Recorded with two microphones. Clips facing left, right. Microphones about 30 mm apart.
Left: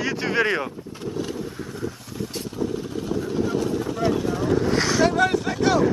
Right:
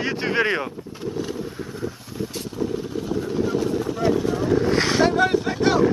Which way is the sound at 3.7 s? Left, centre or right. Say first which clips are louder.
Right 2 dB; centre.